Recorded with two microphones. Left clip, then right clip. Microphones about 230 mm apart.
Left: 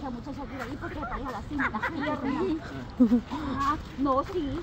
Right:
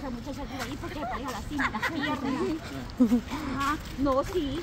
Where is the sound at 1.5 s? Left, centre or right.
Right.